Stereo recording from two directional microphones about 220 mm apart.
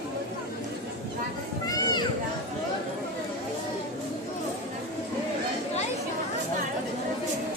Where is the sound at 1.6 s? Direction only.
15° left (ahead or behind).